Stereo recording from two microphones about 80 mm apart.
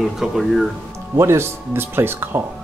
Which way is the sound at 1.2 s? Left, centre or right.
Right.